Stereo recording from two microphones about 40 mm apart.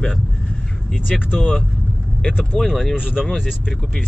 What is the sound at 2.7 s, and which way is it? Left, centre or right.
Speech, centre.